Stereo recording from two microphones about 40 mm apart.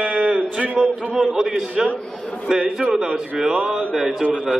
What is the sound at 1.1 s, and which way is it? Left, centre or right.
A man's voice, centre.